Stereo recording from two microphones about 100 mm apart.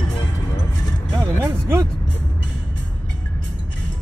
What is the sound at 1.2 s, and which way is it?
Music, 25° right (ahead or behind).